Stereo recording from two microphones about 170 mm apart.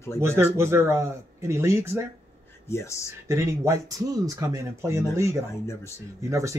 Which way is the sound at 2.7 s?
15° left (ahead or behind).